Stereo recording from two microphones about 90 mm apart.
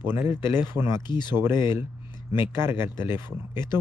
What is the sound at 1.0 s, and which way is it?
Speech, 55° left (ahead or behind).